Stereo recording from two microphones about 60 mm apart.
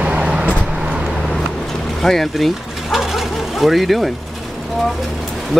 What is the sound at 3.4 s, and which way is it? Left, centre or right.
Speech, centre.